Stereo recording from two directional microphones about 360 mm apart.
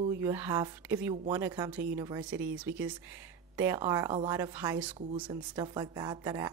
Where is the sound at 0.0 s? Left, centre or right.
Centre.